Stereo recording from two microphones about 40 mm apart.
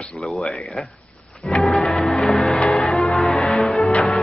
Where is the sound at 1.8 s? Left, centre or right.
Centre.